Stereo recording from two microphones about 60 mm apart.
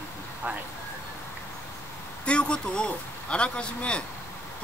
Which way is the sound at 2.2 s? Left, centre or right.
Centre.